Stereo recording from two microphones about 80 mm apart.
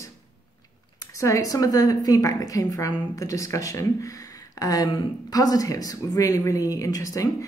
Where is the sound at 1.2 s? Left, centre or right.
Left.